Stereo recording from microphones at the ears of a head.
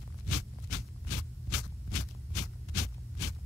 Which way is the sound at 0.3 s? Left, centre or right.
Left.